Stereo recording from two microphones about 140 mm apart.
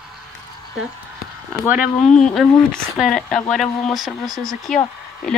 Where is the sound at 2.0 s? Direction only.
5° left (ahead or behind).